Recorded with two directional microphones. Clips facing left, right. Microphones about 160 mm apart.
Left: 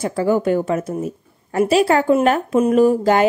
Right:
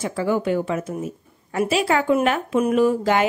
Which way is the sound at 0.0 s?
40° left (ahead or behind).